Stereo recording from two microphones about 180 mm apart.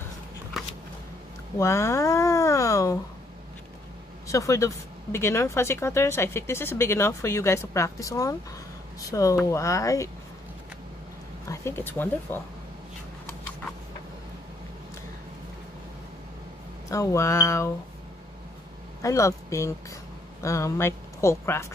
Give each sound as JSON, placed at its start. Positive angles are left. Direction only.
{"t": 1.6, "sound": "speech", "side_deg": 15}
{"t": 4.3, "sound": "speech", "side_deg": 15}
{"t": 11.4, "sound": "speech", "side_deg": 15}
{"t": 16.9, "sound": "speech", "side_deg": 15}
{"t": 19.0, "sound": "speech", "side_deg": 15}